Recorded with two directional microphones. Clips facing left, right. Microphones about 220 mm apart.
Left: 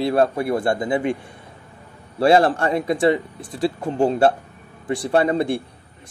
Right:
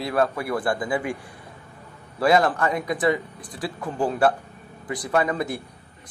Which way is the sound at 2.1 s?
30° left (ahead or behind).